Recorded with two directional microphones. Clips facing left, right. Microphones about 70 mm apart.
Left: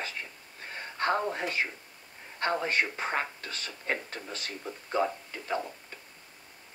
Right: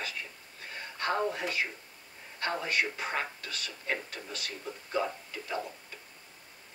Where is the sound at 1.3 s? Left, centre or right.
Left.